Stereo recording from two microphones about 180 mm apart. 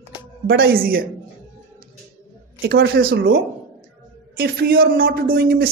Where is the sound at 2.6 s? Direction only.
65° right (ahead or behind).